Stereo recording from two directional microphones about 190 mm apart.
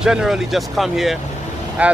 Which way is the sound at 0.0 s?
5° right (ahead or behind).